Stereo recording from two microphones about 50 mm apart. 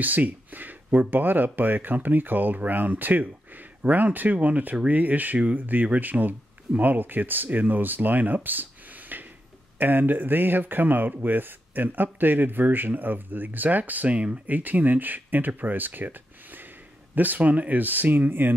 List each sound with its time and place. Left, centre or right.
0.0 s a sound: right
0.9 s speech: right
14.5 s speech: right